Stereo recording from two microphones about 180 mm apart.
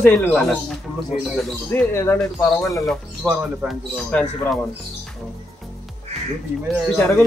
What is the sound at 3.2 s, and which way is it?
Speech, 10° right (ahead or behind).